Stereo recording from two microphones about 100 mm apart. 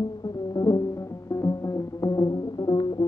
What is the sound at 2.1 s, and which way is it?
Music, 45° left (ahead or behind).